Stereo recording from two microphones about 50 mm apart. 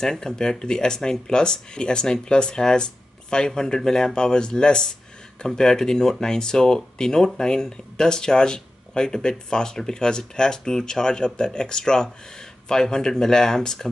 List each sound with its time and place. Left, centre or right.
0.0 s speech: centre